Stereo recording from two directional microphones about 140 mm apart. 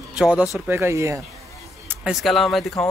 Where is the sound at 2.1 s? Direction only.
Centre (ahead or behind).